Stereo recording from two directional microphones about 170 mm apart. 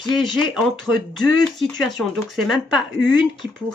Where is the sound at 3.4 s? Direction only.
80° right.